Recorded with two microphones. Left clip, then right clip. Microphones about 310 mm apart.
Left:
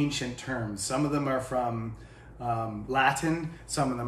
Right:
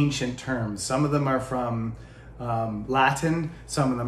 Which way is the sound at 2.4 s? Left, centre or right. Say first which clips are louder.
Right 3 dB; centre.